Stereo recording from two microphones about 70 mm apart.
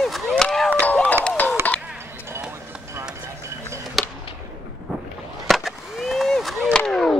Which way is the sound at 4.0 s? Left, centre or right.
Centre.